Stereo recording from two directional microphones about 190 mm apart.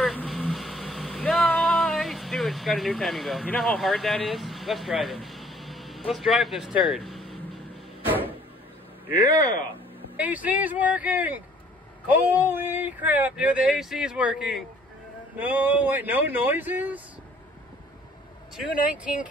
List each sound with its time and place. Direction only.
0.0 s a sound: 5° left (ahead or behind)
9.3 s speech: 20° right (ahead or behind)
10.1 s speech: 10° right (ahead or behind)
18.9 s speech: 5° right (ahead or behind)